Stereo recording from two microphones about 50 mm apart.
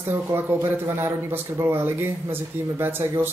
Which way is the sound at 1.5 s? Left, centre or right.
Right.